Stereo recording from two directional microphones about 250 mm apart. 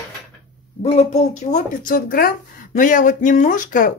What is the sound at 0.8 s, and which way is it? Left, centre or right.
Speech, left.